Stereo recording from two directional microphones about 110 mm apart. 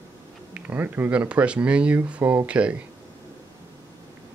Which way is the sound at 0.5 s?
15° right (ahead or behind).